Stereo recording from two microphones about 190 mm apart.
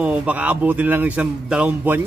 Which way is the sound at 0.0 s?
5° right (ahead or behind).